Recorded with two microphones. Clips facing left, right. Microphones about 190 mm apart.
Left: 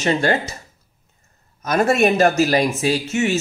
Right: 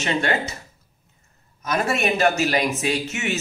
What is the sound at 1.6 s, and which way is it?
A man's voice, 50° left (ahead or behind).